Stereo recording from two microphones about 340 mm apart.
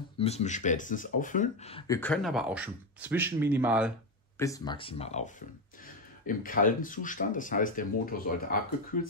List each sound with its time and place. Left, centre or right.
0.2 s speech: centre
4.4 s speech: centre